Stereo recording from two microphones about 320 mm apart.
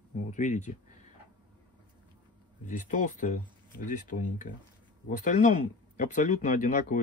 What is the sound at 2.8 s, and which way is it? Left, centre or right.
Speech, left.